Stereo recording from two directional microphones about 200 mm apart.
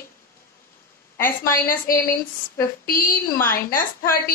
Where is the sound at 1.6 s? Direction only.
45° left (ahead or behind).